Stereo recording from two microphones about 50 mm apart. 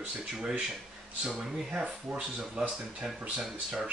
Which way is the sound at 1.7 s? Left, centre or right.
Right.